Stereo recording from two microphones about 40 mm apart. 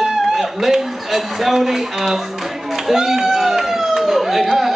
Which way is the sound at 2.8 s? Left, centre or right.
Centre.